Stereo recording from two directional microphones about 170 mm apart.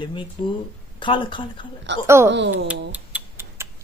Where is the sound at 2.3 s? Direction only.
90° right.